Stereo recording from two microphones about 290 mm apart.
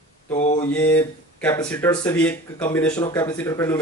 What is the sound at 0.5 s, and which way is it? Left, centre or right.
Speech, centre.